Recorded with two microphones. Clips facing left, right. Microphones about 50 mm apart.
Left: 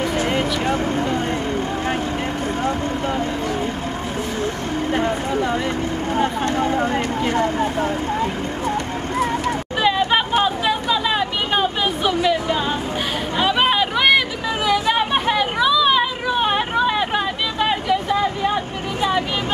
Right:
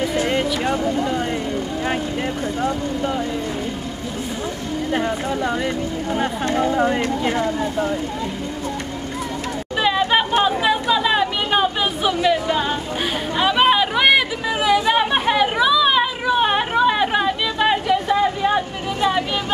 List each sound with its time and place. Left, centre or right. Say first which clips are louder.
0.3 s vehicle: even; centre
0.7 s speech: even; left
2.6 s speech: right 1 dB; left
6.8 s speech: right 1 dB; centre
7.5 s speech: left 1 dB; left
9.8 s chatter: right 1 dB; centre
13.4 s a sound: right 2 dB; centre
18.9 s vehicle: right 1 dB; centre